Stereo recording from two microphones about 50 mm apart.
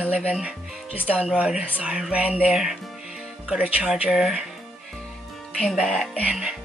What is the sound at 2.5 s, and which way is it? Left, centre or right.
Speech, centre.